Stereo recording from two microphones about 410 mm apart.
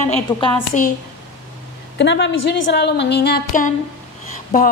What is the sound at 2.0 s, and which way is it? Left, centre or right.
A woman's voice, left.